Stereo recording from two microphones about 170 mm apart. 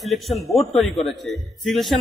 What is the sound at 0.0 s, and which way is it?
A man's voice, centre (ahead or behind).